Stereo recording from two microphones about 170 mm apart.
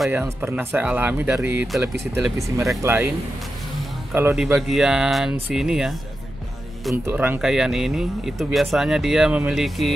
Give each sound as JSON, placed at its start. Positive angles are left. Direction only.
{"t": 0.1, "sound": "speech", "side_deg": -10}
{"t": 4.1, "sound": "speech", "side_deg": -15}
{"t": 4.6, "sound": "speech", "side_deg": 0}
{"t": 7.1, "sound": "speech", "side_deg": -10}